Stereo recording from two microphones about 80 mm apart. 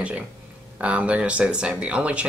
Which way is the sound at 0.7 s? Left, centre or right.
Centre.